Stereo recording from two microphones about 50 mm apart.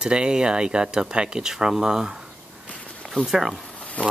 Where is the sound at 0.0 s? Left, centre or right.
Centre.